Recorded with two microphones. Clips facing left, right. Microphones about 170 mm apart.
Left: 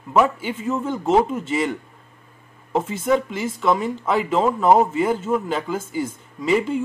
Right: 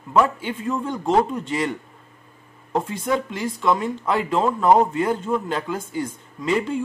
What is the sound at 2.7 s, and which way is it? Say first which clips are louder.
Speech: left 3 dB; centre (ahead or behind).